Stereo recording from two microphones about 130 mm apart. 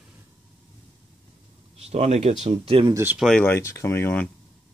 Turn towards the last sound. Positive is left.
turn(degrees=20)  # may be behind; listen again after turning